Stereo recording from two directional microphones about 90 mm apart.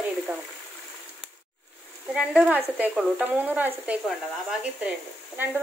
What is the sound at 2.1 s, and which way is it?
Speech, 5° right (ahead or behind).